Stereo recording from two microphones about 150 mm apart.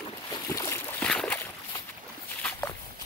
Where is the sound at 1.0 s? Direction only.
5° left (ahead or behind).